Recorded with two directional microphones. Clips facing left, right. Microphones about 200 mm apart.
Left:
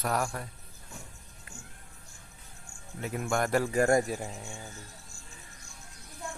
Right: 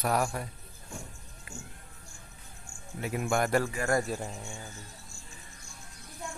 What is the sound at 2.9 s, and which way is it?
Speech, 10° right (ahead or behind).